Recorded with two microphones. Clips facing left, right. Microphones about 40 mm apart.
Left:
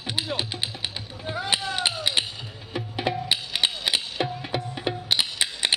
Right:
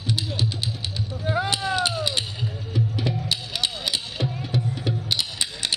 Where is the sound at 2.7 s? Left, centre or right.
Left.